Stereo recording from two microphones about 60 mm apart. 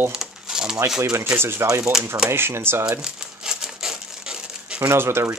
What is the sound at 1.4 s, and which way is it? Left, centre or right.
Speech, right.